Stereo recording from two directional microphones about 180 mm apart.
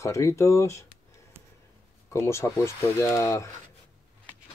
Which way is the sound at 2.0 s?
15° left (ahead or behind).